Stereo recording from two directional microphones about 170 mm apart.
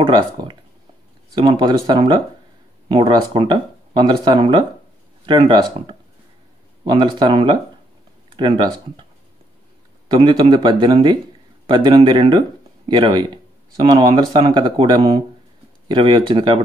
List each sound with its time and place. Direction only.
0.0 s speech: 25° right (ahead or behind)
10.0 s speech: 25° right (ahead or behind)